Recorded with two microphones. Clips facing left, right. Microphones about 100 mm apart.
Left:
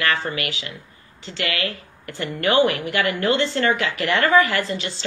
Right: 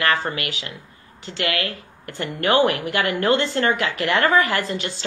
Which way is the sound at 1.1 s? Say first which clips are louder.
Right 2 dB; 50° right (ahead or behind).